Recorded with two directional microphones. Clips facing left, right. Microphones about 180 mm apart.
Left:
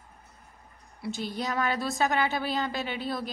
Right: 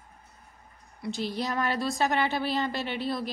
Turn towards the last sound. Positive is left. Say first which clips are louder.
# right 2 dB
turn(degrees=0)  # may be behind; listen again after turning